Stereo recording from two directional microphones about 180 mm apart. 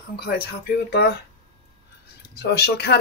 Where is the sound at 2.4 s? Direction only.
65° left (ahead or behind).